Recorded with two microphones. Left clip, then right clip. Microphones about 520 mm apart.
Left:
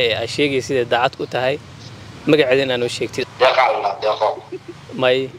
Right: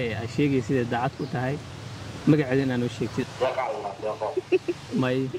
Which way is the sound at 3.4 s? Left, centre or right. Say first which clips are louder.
Left 13 dB; centre.